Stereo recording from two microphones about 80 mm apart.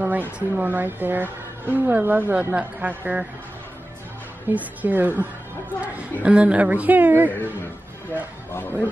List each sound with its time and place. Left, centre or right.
0.0 s a woman's voice: right
4.5 s a woman's voice: right
8.5 s speech: left